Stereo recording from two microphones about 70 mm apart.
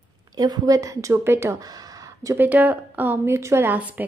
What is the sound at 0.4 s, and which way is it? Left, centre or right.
Speech, right.